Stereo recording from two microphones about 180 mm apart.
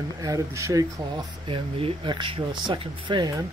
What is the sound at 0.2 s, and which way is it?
Speech, 20° right (ahead or behind).